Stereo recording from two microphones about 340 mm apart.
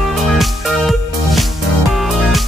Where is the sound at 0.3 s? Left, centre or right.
Centre.